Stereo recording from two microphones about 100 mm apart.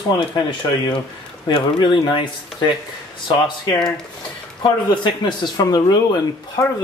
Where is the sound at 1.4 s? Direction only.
45° left (ahead or behind).